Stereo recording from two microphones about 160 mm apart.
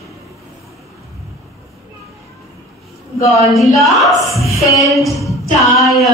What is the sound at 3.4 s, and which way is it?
A woman's voice, centre (ahead or behind).